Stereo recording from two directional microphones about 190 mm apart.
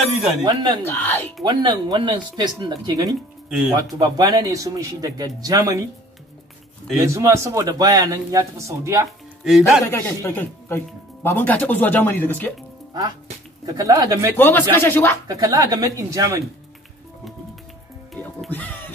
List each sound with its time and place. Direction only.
0.4 s speech: 20° right (ahead or behind)
0.8 s speech: 10° left (ahead or behind)
1.4 s speech: 20° right (ahead or behind)
3.4 s speech: 5° right (ahead or behind)
3.7 s speech: 20° right (ahead or behind)
7.0 s speech: 15° right (ahead or behind)
9.4 s speech: centre (ahead or behind)
9.8 s speech: 10° left (ahead or behind)
13.7 s speech: 20° right (ahead or behind)
14.3 s speech: 10° left (ahead or behind)
15.2 s speech: 20° right (ahead or behind)
18.1 s music: 5° left (ahead or behind)